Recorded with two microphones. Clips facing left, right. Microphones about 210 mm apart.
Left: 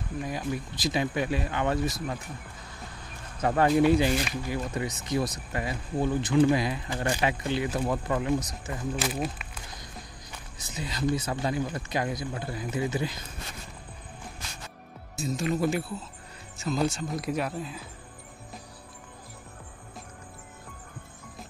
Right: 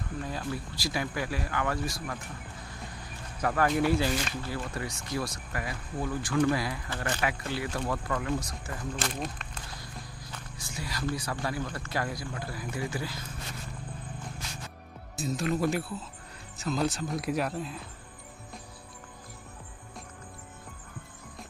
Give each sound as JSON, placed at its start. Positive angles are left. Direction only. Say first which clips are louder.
{"t": 0.2, "sound": "speech", "louder": "left 4 dB", "side_deg": 15}
{"t": 3.3, "sound": "speech", "louder": "left 4 dB", "side_deg": 25}
{"t": 8.9, "sound": "speech", "louder": "left 4 dB", "side_deg": 5}
{"t": 10.3, "sound": "speech", "louder": "left 2 dB", "side_deg": 20}
{"t": 15.1, "sound": "speech", "louder": "left 1 dB", "side_deg": 0}